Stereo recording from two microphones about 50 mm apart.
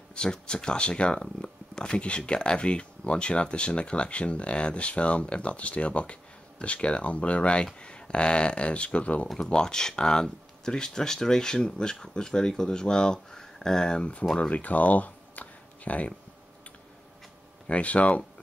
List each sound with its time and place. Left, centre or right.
0.1 s speech: centre
9.4 s speech: centre
14.5 s speech: left
17.6 s speech: left